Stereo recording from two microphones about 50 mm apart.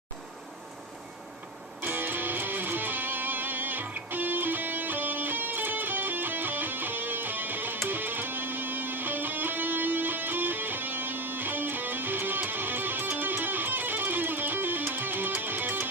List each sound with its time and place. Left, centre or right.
1.8 s music: right